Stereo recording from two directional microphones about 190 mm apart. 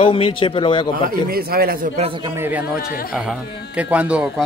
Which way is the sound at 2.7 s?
50° left (ahead or behind).